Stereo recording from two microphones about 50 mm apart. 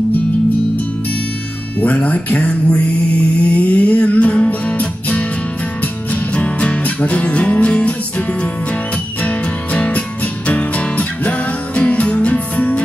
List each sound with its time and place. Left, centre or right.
1.8 s music: left
6.3 s music: left
9.2 s music: left